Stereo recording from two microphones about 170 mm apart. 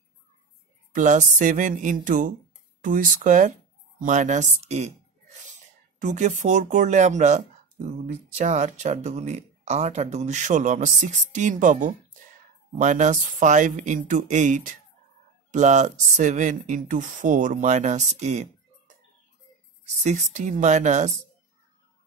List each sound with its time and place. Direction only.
0.9 s speech: 50° right (ahead or behind)
5.9 s speech: 45° right (ahead or behind)
19.8 s speech: 45° right (ahead or behind)